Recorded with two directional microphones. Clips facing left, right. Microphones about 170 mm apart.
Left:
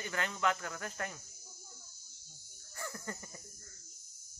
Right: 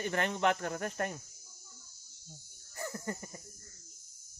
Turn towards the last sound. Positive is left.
turn(degrees=-25)  # may be behind; listen again after turning